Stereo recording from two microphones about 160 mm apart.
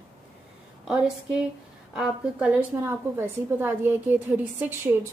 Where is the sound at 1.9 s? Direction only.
5° right (ahead or behind).